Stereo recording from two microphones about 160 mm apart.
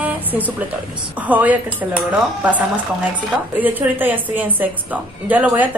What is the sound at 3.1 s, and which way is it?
A woman's voice, 10° right (ahead or behind).